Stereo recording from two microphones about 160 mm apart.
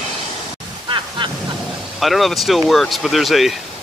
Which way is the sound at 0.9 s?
30° right (ahead or behind).